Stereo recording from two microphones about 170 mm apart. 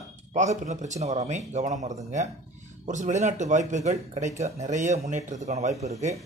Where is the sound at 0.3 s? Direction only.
45° right (ahead or behind).